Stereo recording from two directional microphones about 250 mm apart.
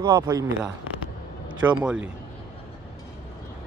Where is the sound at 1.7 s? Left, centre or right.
Centre.